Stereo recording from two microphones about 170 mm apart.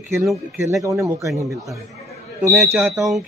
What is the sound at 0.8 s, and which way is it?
Speech, 15° right (ahead or behind).